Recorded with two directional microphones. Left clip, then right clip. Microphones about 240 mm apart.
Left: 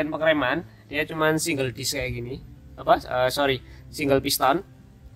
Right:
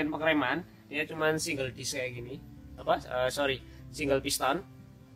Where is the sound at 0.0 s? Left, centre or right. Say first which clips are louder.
Left 6 dB; left.